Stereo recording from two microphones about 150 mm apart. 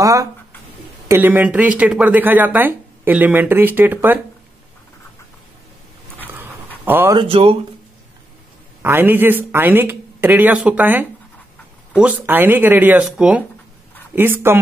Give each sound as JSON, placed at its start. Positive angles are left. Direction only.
{"t": 0.0, "sound": "a sound", "side_deg": -20}
{"t": 1.0, "sound": "speech", "side_deg": -15}
{"t": 6.8, "sound": "speech", "side_deg": -15}
{"t": 7.2, "sound": "speech", "side_deg": -40}
{"t": 8.8, "sound": "speech", "side_deg": -15}